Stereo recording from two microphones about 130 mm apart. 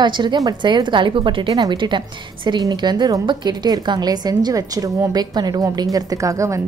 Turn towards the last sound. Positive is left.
turn(degrees=-25)  # may be behind; listen again after turning